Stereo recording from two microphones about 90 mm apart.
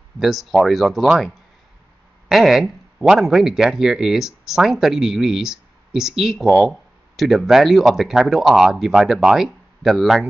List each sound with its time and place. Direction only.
0.2 s speech: centre (ahead or behind)